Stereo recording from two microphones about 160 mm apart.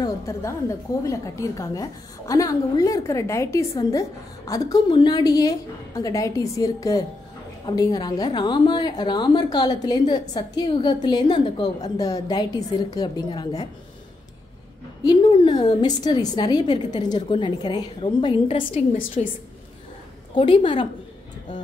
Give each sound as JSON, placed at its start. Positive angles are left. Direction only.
{"t": 0.0, "sound": "a woman's voice", "side_deg": 15}
{"t": 15.0, "sound": "a woman's voice", "side_deg": 25}
{"t": 20.3, "sound": "a woman's voice", "side_deg": 35}